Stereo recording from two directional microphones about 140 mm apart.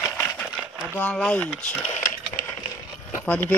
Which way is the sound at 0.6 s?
5° right (ahead or behind).